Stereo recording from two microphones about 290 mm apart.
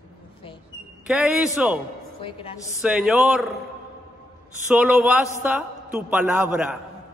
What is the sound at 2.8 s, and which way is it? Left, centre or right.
Speech, centre.